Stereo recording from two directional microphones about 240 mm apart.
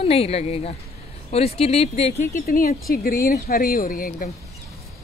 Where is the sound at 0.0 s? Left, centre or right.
Left.